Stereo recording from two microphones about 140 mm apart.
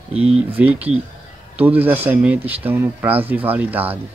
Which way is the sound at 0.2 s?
10° right (ahead or behind).